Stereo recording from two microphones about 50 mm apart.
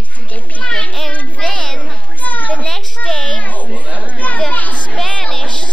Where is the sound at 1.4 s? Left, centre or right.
Centre.